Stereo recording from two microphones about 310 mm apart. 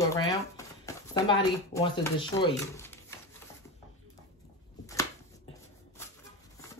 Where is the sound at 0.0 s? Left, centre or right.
Centre.